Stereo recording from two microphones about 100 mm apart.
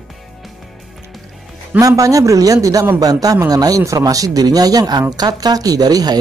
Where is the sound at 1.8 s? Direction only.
35° right (ahead or behind).